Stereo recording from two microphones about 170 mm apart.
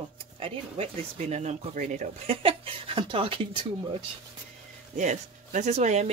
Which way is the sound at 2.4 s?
30° right (ahead or behind).